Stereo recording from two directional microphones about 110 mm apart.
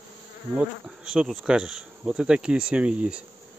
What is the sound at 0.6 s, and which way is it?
Insect, 5° right (ahead or behind).